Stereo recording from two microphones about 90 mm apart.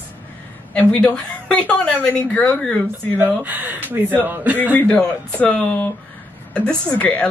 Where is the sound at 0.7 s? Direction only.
15° left (ahead or behind).